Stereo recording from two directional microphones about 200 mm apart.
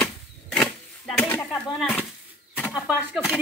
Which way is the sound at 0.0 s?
5° left (ahead or behind).